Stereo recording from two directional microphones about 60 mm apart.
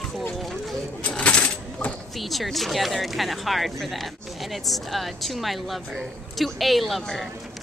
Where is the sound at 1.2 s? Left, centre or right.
Centre.